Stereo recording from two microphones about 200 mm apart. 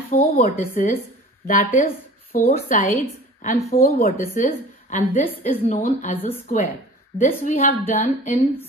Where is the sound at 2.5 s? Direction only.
40° left (ahead or behind).